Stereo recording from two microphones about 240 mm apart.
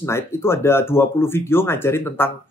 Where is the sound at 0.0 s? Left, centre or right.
Centre.